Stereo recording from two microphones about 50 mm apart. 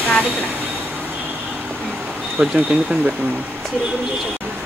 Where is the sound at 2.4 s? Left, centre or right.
Centre.